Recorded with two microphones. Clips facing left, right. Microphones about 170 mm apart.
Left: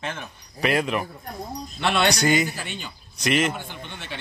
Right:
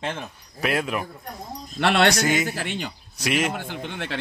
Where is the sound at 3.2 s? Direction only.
10° right (ahead or behind).